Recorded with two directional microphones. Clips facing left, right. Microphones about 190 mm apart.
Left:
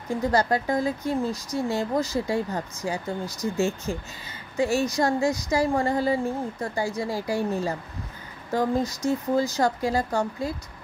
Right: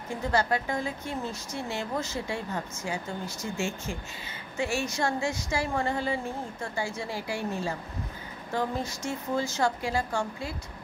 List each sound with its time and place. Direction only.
0.3 s speech: 40° left (ahead or behind)